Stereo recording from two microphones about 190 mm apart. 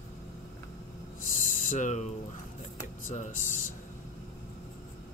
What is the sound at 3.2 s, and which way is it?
Speech, 40° left (ahead or behind).